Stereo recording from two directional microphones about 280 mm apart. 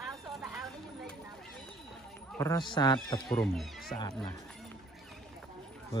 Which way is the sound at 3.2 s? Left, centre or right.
Centre.